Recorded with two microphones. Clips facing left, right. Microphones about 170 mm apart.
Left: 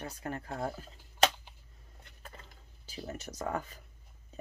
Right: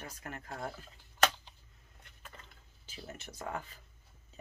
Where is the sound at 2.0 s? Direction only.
40° left (ahead or behind).